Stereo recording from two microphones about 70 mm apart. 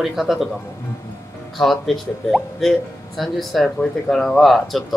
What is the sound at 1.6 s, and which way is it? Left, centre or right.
Speech, centre.